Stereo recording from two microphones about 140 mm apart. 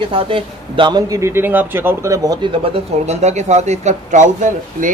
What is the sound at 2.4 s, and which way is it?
Speech, 45° right (ahead or behind).